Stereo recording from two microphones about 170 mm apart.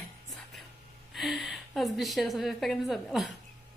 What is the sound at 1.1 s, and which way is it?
A woman's voice, centre (ahead or behind).